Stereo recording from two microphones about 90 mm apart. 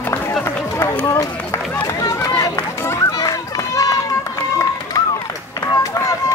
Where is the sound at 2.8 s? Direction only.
30° left (ahead or behind).